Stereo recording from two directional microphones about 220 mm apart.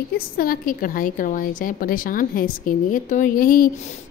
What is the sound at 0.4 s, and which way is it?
A woman's voice, 40° left (ahead or behind).